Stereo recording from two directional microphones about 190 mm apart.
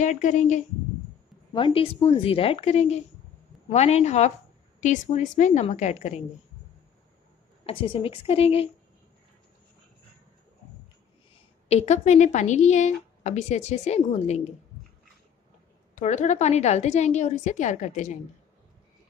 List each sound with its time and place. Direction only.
0.0 s a woman's voice: 40° left (ahead or behind)
1.5 s a woman's voice: 30° left (ahead or behind)
7.6 s a woman's voice: 30° left (ahead or behind)
11.7 s a woman's voice: 35° left (ahead or behind)
15.9 s a woman's voice: 40° left (ahead or behind)